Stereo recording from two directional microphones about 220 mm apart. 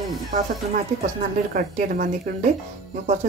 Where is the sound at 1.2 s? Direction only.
35° right (ahead or behind).